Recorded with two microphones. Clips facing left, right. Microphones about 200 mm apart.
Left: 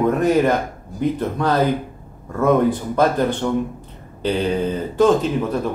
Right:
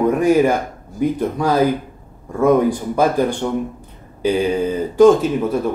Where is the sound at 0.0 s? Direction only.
10° right (ahead or behind).